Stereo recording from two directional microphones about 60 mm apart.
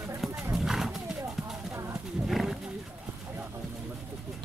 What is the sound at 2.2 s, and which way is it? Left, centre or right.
Wild animals, centre.